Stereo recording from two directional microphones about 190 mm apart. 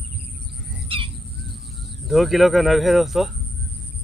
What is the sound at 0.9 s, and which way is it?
Crow, 30° right (ahead or behind).